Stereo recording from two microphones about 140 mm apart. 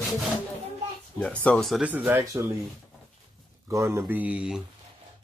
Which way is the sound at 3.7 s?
20° right (ahead or behind).